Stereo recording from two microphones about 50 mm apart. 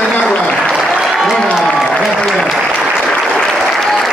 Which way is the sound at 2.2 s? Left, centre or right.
Centre.